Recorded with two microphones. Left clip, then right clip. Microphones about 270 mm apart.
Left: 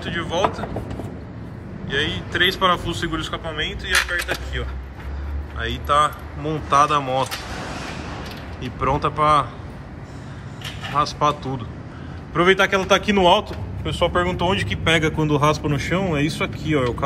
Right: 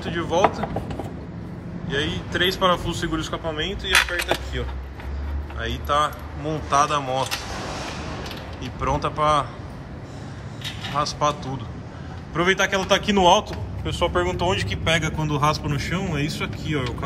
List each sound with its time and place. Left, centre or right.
0.0 s speech: centre
1.9 s a man's voice: centre
5.6 s a man's voice: centre
8.8 s a man's voice: centre
10.6 s a man's voice: centre